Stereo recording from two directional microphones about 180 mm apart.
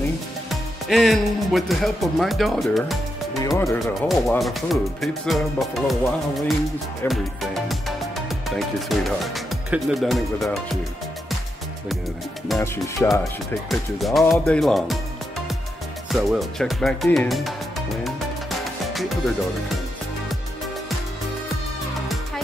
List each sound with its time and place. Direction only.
0.5 s speech: centre (ahead or behind)
3.3 s music: 20° left (ahead or behind)
3.8 s speech: centre (ahead or behind)
7.1 s speech: centre (ahead or behind)
12.5 s speech: 15° left (ahead or behind)
13.1 s speech: centre (ahead or behind)
16.1 s speech: centre (ahead or behind)
18.9 s music: centre (ahead or behind)